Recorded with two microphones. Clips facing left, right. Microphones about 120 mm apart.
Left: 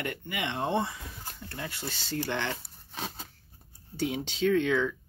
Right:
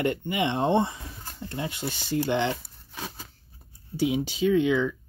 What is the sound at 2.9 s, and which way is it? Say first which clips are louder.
Scissors: even; 25° left (ahead or behind).